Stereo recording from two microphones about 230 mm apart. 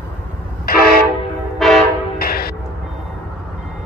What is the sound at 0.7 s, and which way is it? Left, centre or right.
Train, left.